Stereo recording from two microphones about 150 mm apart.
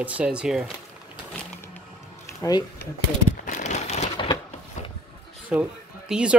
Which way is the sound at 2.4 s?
20° left (ahead or behind).